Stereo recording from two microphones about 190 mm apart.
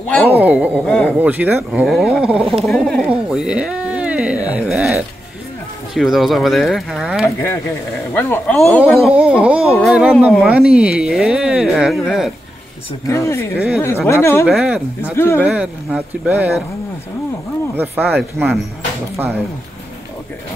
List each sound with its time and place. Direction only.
0.3 s speech: 10° right (ahead or behind)
0.8 s speech: 5° left (ahead or behind)
1.2 s speech: 5° right (ahead or behind)
8.1 s speech: 10° left (ahead or behind)
13.0 s speech: 15° left (ahead or behind)
14.4 s speech: centre (ahead or behind)
15.1 s speech: 10° left (ahead or behind)
15.4 s speech: 5° right (ahead or behind)
17.7 s speech: 10° right (ahead or behind)